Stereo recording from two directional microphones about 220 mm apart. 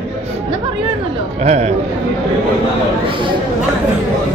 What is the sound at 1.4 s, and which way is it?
Speech, 30° right (ahead or behind).